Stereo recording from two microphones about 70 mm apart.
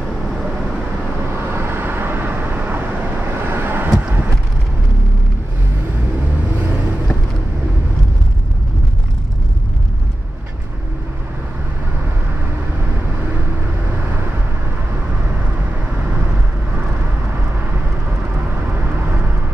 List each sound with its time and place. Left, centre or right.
1.3 s vehicle: right